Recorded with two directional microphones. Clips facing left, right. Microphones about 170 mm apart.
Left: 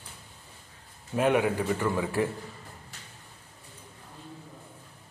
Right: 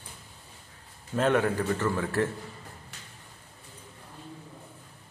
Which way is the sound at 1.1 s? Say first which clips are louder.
Even; 10° left (ahead or behind).